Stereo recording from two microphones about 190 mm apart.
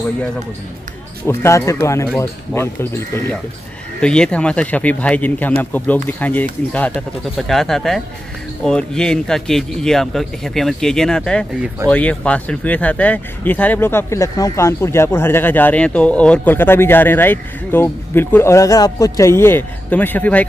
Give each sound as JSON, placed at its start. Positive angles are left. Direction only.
{"t": 1.2, "sound": "speech", "side_deg": 15}